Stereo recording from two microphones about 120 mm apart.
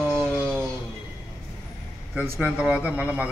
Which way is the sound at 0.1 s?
5° left (ahead or behind).